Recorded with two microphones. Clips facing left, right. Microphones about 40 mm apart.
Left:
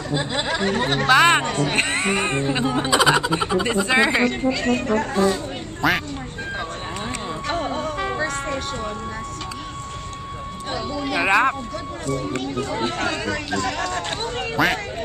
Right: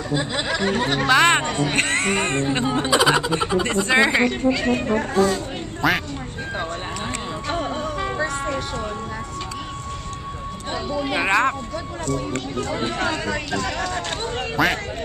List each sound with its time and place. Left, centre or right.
0.1 s speech: centre
1.1 s speech: centre
1.8 s speech: centre
2.5 s speech: centre
3.6 s speech: centre
3.9 s speech: centre
4.5 s speech: centre
5.8 s speech: centre
7.9 s music: centre
10.9 s speech: centre
11.1 s speech: centre